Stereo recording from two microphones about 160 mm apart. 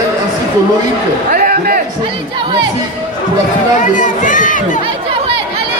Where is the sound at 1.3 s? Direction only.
65° right (ahead or behind).